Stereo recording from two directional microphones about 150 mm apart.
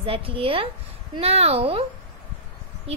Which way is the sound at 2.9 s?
45° right (ahead or behind).